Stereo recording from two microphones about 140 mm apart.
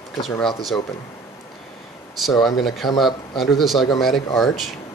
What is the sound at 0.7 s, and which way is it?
Speech, 10° left (ahead or behind).